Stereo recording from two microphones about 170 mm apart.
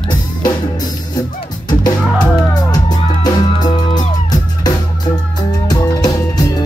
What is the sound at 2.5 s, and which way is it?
Music, 25° left (ahead or behind).